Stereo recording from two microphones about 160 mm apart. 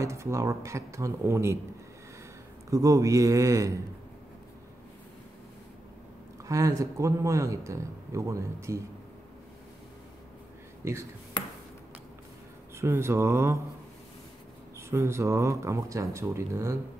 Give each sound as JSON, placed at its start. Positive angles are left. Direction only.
{"t": 0.0, "sound": "speech", "side_deg": -20}
{"t": 2.7, "sound": "speech", "side_deg": -20}
{"t": 6.4, "sound": "speech", "side_deg": -20}
{"t": 10.8, "sound": "speech", "side_deg": -15}
{"t": 12.7, "sound": "speech", "side_deg": -15}
{"t": 14.8, "sound": "speech", "side_deg": -15}